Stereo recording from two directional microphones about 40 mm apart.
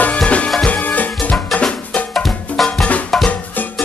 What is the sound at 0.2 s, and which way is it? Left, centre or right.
Music, left.